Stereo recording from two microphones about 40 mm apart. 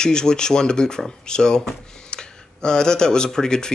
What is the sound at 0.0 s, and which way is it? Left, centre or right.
Speech, centre.